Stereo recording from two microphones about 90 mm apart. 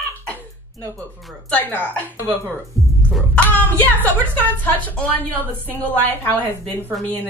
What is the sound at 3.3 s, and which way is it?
Speech, 20° left (ahead or behind).